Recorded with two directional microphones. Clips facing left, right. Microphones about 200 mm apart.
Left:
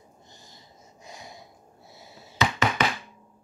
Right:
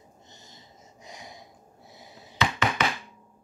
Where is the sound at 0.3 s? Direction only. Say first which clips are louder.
Even; 20° right (ahead or behind).